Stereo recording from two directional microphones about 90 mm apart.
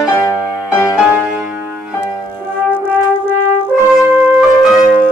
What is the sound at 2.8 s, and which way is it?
Brass instrument, 20° right (ahead or behind).